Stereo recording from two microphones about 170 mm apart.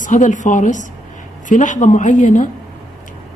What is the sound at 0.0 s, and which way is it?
A woman's voice, 50° left (ahead or behind).